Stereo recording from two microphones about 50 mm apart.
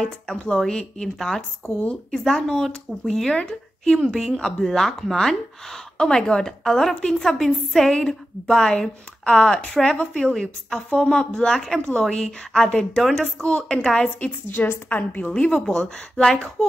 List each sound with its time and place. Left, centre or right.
0.5 s speech: centre
14.9 s a woman's voice: left
15.3 s speech: centre